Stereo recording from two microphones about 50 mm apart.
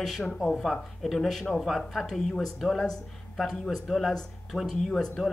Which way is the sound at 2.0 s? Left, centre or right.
Centre.